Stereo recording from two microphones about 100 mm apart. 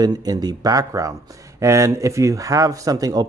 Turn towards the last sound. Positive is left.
turn(degrees=-35)  # may be behind; listen again after turning